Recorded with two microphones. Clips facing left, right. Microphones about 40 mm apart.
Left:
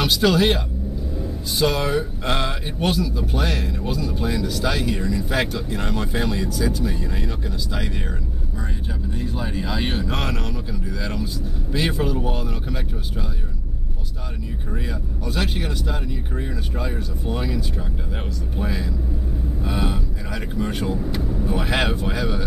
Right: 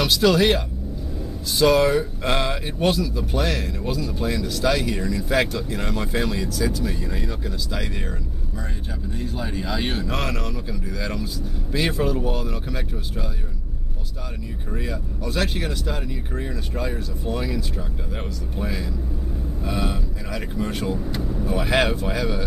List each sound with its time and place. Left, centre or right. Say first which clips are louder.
0.0 s speech: even; centre
9.1 s speech: left 1 dB; centre
14.7 s speech: right 1 dB; centre